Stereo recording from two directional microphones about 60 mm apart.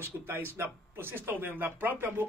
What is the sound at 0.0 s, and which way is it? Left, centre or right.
Speech, right.